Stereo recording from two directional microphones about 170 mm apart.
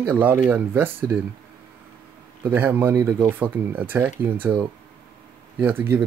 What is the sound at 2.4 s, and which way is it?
Speech, 10° right (ahead or behind).